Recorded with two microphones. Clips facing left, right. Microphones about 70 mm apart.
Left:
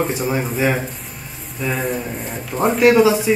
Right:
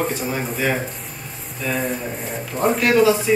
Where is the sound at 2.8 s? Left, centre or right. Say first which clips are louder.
Left 5 dB; centre.